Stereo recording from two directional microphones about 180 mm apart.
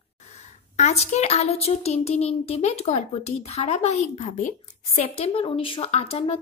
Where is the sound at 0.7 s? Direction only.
40° left (ahead or behind).